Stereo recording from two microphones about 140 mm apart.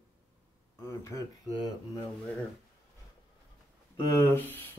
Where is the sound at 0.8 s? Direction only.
20° left (ahead or behind).